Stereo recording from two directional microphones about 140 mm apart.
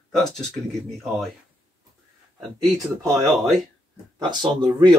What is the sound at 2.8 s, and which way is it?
Speech, 20° right (ahead or behind).